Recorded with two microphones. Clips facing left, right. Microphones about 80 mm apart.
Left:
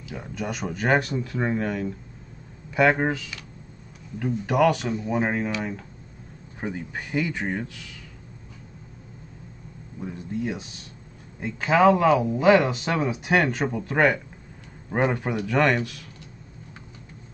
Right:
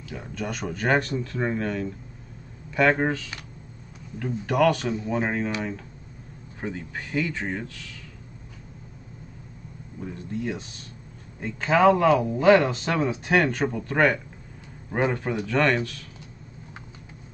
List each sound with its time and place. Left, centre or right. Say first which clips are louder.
0.1 s speech: left 1 dB; centre
6.6 s speech: left 1 dB; centre
9.9 s speech: left 2 dB; centre